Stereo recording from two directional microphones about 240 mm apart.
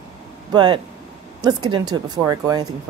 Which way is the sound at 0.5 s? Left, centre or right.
Centre.